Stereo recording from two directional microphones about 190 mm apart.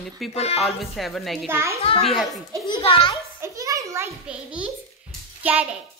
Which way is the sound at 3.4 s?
15° right (ahead or behind).